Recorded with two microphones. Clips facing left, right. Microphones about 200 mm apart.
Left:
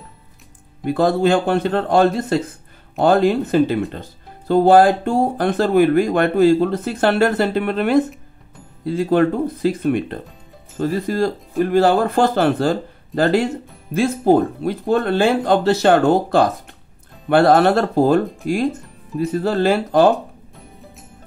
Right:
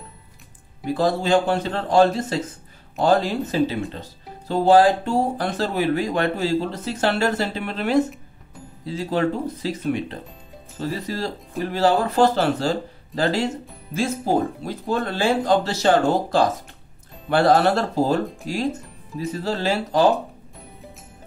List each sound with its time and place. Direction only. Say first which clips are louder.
0.9 s speech: left 3 dB; 55° left (ahead or behind)
18.2 s speech: left 4 dB; centre (ahead or behind)
18.5 s speech: left 7 dB; 55° left (ahead or behind)